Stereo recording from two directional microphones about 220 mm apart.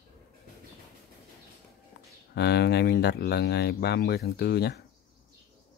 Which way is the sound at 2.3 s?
50° left (ahead or behind).